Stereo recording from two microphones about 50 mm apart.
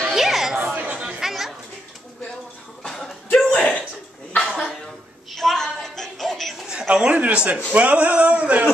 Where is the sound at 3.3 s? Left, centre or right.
Left.